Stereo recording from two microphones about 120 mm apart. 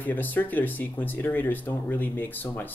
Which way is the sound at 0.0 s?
15° left (ahead or behind).